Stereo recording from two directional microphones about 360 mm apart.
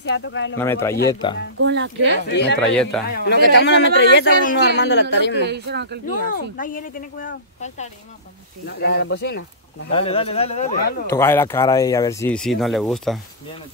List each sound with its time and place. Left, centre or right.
0.0 s speech: left
0.6 s speech: centre
1.6 s speech: right
2.2 s speech: left
2.7 s speech: centre
3.1 s speech: left
5.4 s speech: right
6.0 s speech: left
9.8 s speech: centre
11.1 s speech: centre